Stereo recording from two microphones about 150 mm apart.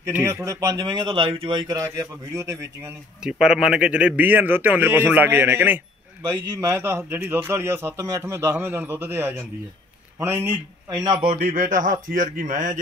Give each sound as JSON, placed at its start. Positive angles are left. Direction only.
{"t": 0.0, "sound": "speech", "side_deg": -20}
{"t": 2.3, "sound": "speech", "side_deg": -20}
{"t": 3.2, "sound": "a man's voice", "side_deg": -5}
{"t": 11.0, "sound": "speech", "side_deg": -30}
{"t": 11.5, "sound": "a man's voice", "side_deg": -60}